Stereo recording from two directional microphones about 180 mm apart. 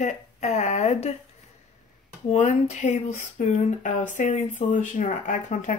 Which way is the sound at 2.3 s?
40° left (ahead or behind).